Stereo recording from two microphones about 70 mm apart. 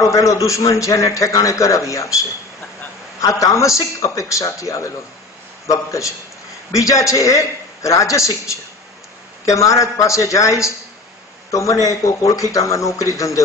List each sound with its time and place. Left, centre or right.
0.1 s a man's voice: left
3.2 s a man's voice: left